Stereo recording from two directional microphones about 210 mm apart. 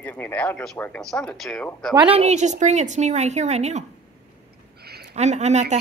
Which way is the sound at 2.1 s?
30° right (ahead or behind).